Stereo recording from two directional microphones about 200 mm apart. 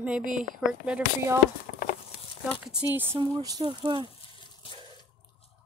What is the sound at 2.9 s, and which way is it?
A woman's voice, 10° right (ahead or behind).